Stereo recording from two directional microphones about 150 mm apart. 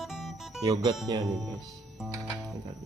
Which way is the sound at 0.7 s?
25° right (ahead or behind).